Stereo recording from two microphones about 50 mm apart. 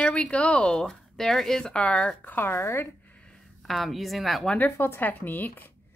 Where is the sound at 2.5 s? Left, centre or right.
Left.